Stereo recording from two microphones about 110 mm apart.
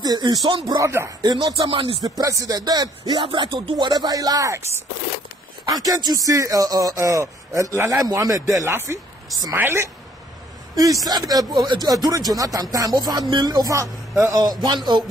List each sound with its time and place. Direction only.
0.0 s speech: 40° right (ahead or behind)
2.0 s speech: 30° right (ahead or behind)
5.8 s a woman's voice: 35° right (ahead or behind); by 9.8 s 20° right (ahead or behind)
10.8 s speech: 35° right (ahead or behind)